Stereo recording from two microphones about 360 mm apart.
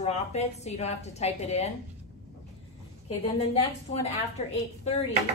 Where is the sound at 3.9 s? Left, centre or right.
Centre.